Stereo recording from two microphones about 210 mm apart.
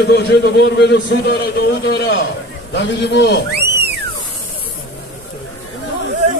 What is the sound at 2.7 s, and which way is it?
Speech, 55° left (ahead or behind).